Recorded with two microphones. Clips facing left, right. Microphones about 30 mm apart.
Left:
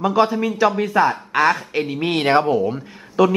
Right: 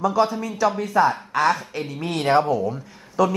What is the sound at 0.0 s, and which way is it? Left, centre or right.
Speech, left.